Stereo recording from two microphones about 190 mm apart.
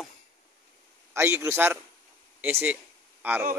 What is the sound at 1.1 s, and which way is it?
A man's voice, 15° right (ahead or behind).